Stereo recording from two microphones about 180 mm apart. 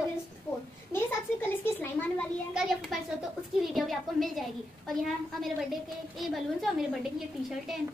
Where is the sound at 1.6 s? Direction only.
10° left (ahead or behind).